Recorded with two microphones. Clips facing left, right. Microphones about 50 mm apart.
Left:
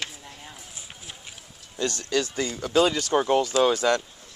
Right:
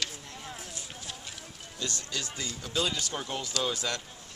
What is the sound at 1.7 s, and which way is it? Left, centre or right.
Speech, left.